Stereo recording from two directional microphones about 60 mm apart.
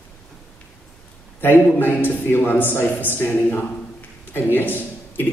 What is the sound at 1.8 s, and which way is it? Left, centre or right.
A man's voice, left.